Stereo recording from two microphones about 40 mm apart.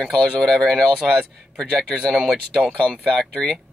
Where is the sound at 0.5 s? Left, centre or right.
Centre.